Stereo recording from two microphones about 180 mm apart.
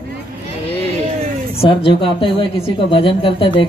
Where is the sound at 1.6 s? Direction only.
30° left (ahead or behind).